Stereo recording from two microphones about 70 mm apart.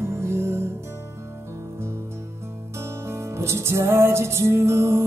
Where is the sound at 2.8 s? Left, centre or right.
Right.